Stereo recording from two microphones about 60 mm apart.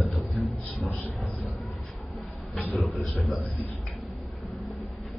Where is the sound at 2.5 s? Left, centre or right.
Left.